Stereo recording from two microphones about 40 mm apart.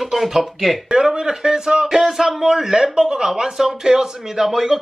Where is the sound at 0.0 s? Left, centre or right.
Centre.